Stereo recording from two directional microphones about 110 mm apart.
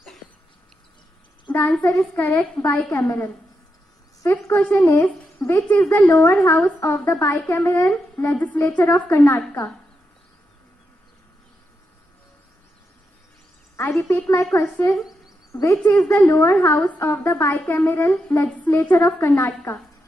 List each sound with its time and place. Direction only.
1.5 s a woman's voice: 15° left (ahead or behind)
13.7 s a woman's voice: 20° left (ahead or behind)
15.0 s a sound: 5° right (ahead or behind)
15.5 s a woman's voice: 25° left (ahead or behind)